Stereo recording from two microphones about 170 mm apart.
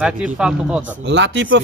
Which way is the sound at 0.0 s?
5° right (ahead or behind).